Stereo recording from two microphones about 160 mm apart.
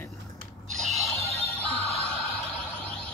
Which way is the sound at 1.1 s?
10° left (ahead or behind).